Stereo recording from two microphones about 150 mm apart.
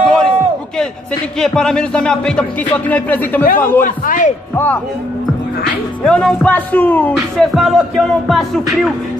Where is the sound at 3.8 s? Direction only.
60° left (ahead or behind).